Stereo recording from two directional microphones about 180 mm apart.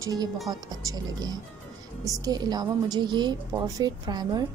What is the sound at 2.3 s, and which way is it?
A woman's voice, 20° right (ahead or behind).